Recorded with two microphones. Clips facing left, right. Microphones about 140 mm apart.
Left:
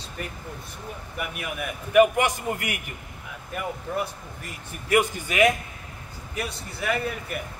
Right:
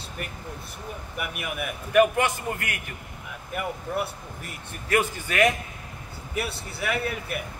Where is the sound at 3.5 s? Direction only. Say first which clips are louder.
Even; 5° right (ahead or behind).